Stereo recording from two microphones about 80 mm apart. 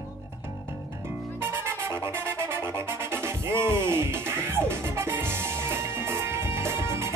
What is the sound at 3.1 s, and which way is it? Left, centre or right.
Music, right.